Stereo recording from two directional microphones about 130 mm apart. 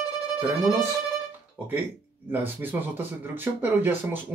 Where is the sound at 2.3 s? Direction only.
15° right (ahead or behind).